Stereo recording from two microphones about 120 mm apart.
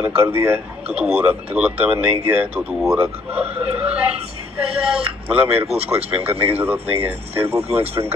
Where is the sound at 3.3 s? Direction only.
55° right (ahead or behind).